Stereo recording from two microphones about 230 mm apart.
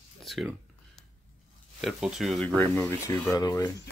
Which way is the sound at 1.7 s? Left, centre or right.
Centre.